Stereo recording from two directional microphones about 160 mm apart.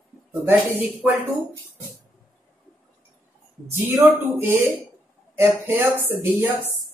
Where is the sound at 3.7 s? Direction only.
15° right (ahead or behind).